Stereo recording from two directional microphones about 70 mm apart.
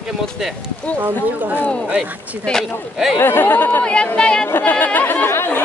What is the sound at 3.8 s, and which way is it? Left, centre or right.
Speech, centre.